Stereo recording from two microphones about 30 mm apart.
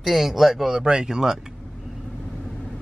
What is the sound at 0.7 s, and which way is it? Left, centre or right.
Speech, right.